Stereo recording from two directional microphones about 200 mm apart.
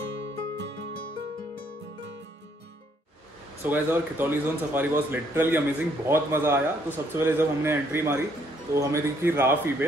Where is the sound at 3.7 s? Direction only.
10° right (ahead or behind).